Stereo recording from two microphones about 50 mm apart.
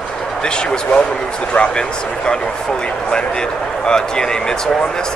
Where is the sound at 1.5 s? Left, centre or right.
Centre.